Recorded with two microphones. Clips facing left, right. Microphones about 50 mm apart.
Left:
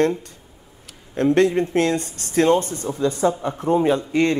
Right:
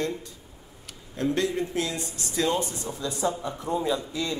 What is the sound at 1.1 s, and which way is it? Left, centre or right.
A man's voice, left.